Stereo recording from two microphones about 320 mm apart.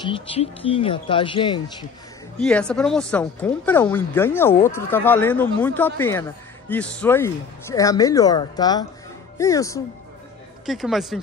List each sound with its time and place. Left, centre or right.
0.0 s speech: centre
2.3 s speech: centre
10.6 s speech: centre